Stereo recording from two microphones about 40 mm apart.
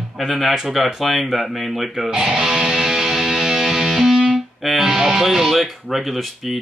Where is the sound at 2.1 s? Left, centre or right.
Centre.